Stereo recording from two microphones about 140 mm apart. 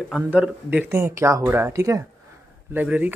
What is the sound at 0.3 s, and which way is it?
Speech, 10° right (ahead or behind).